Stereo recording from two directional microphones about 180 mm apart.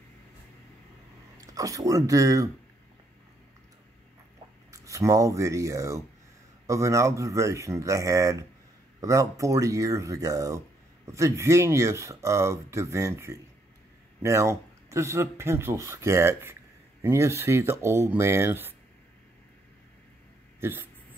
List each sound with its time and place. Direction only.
1.4 s speech: 20° right (ahead or behind)
4.6 s speech: 15° right (ahead or behind)
20.6 s speech: 10° right (ahead or behind)